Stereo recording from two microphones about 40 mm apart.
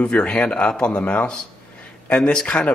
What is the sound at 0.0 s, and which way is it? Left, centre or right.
Speech, left.